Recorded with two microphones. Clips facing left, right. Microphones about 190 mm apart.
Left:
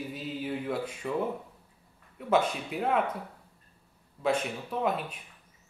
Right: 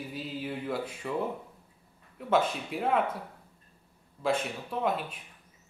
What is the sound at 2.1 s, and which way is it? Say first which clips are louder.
Speech: left 1 dB; centre (ahead or behind).